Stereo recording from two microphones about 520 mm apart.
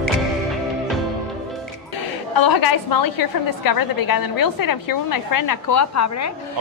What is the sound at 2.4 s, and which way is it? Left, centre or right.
A woman's voice, left.